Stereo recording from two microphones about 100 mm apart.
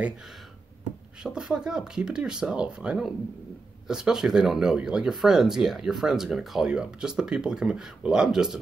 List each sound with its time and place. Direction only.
1.2 s speech: 10° right (ahead or behind)